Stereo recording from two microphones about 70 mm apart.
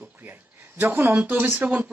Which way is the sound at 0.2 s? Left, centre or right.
Right.